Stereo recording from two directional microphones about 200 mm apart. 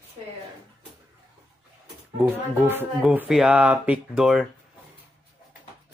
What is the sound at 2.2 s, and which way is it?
Speech, 10° right (ahead or behind).